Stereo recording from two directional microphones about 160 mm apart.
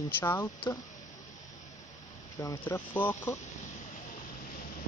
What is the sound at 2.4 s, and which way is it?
Speech, 15° left (ahead or behind).